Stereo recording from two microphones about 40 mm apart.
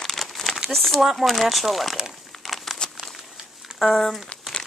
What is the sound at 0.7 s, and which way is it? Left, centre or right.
Speech, centre.